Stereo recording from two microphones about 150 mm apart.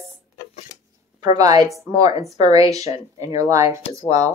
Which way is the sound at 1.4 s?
25° right (ahead or behind).